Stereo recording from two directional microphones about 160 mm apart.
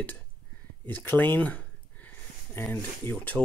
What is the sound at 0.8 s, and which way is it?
Speech, 10° left (ahead or behind).